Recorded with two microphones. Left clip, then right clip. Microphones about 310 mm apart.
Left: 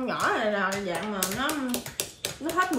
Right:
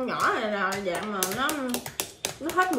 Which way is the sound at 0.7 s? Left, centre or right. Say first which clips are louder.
Right 1 dB; centre.